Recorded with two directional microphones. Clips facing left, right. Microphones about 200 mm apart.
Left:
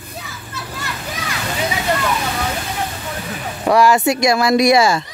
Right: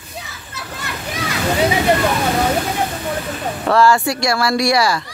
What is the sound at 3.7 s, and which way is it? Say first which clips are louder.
Speech: left 1 dB; 15° left (ahead or behind).